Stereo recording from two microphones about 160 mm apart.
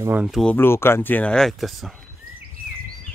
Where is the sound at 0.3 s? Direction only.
Centre (ahead or behind).